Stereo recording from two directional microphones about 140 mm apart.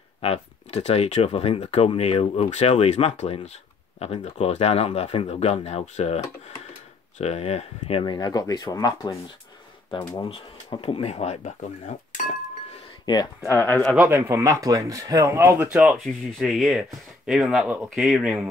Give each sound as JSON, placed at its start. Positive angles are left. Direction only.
{"t": 0.2, "sound": "speech", "side_deg": 50}
{"t": 8.0, "sound": "speech", "side_deg": 30}
{"t": 10.2, "sound": "speech", "side_deg": 40}
{"t": 13.0, "sound": "speech", "side_deg": 30}
{"t": 13.5, "sound": "speech", "side_deg": 15}
{"t": 13.9, "sound": "speech", "side_deg": -15}
{"t": 15.8, "sound": "speech", "side_deg": 0}